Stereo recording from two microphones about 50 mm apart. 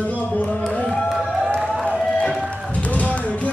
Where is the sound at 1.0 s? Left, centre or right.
Centre.